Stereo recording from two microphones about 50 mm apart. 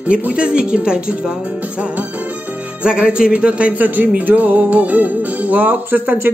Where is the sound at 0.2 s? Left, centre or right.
Right.